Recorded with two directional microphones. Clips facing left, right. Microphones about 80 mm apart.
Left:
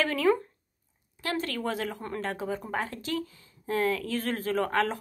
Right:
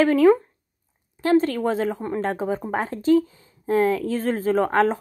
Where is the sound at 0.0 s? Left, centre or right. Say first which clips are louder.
Right 9 dB; right.